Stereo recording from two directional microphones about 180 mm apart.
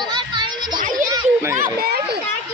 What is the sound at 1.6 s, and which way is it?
Speech, 55° right (ahead or behind).